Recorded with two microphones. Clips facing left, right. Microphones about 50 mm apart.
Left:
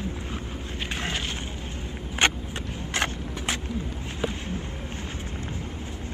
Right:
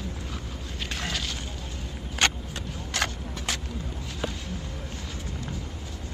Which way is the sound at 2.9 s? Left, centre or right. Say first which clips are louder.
Left 2 dB; left.